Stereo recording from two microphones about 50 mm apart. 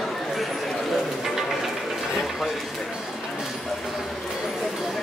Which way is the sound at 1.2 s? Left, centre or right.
Centre.